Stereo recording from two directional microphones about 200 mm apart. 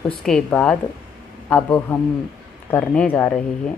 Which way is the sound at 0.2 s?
5° left (ahead or behind).